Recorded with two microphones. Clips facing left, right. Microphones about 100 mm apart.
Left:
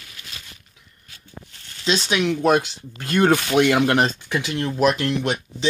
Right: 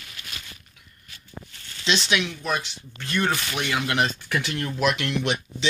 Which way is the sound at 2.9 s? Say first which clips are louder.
Left 8 dB; 40° left (ahead or behind).